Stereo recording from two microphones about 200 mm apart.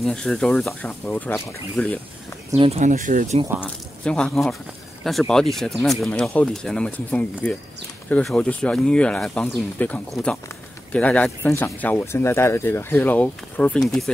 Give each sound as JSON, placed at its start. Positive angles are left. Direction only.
{"t": 0.0, "sound": "speech", "side_deg": 0}
{"t": 2.5, "sound": "speech", "side_deg": -30}
{"t": 3.6, "sound": "speech", "side_deg": 5}